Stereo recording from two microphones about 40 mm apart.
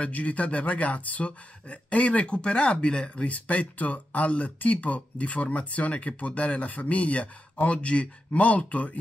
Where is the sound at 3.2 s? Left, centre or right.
Left.